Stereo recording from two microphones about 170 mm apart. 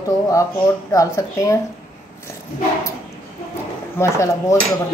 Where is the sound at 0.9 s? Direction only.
20° left (ahead or behind).